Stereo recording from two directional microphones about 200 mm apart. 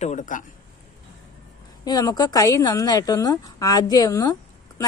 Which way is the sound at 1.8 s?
20° left (ahead or behind).